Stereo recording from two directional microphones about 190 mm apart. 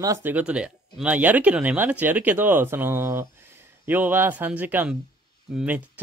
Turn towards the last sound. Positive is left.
turn(degrees=-5)  # may be behind; listen again after turning